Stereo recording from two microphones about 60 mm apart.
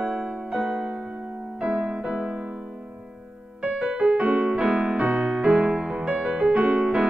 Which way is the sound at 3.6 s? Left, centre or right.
Centre.